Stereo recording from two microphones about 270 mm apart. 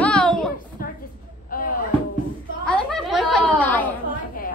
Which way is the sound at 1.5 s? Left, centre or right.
Left.